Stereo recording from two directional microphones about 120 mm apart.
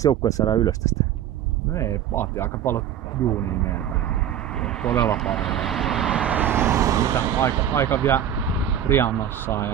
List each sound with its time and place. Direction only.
0.0 s speech: 30° left (ahead or behind)
4.6 s speech: 5° left (ahead or behind); by 7.3 s 25° right (ahead or behind)
7.7 s speech: 20° left (ahead or behind)
8.4 s a sound: 15° right (ahead or behind)
8.8 s speech: 20° left (ahead or behind)